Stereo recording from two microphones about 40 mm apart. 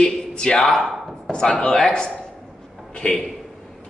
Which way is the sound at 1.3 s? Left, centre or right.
Centre.